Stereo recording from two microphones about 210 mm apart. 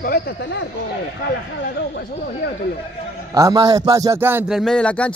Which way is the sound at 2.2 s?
50° left (ahead or behind).